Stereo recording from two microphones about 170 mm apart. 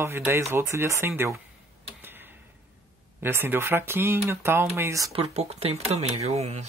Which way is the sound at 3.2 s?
15° right (ahead or behind).